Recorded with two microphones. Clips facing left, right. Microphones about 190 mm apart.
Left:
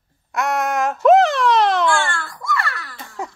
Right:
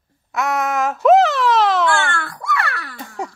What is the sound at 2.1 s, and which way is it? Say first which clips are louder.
Baby cry: right 2 dB; 65° right (ahead or behind).